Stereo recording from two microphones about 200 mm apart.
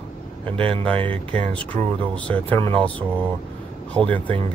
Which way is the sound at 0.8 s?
5° left (ahead or behind).